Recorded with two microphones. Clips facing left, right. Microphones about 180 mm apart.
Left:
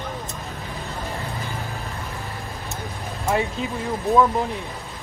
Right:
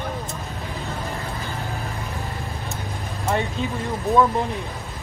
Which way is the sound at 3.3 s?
Centre (ahead or behind).